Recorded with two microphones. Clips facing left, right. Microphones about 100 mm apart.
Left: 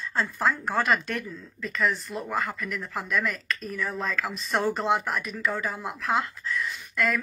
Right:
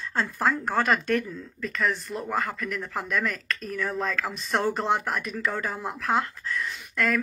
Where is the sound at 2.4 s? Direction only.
55° right (ahead or behind).